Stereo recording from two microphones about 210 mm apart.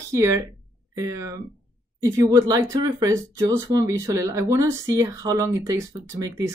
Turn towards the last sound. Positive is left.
turn(degrees=-15)  # may be behind; listen again after turning